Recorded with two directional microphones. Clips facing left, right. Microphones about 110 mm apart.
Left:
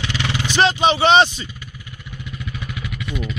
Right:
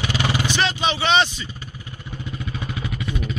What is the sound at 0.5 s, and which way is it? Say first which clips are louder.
Vehicle: left 6 dB; 25° left (ahead or behind).